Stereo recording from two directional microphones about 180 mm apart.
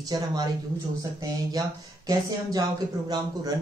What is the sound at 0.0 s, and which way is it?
Speech, 20° right (ahead or behind).